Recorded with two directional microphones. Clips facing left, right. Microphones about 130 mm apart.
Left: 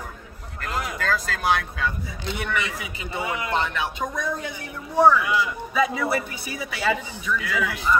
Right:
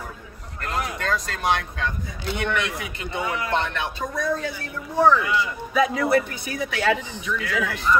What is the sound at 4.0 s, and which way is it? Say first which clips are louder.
Speech: right 2 dB; 20° left (ahead or behind).